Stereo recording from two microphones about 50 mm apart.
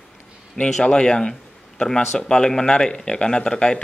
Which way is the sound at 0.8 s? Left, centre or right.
Centre.